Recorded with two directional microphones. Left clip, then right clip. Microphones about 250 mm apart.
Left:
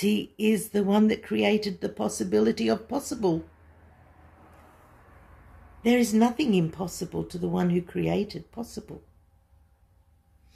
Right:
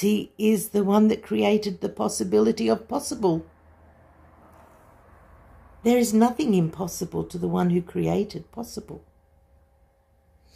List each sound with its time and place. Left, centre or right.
0.4 s speech: centre
5.9 s speech: centre